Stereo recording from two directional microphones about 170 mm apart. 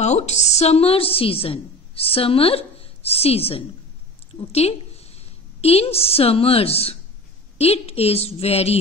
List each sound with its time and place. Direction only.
0.0 s a woman's voice: 40° left (ahead or behind)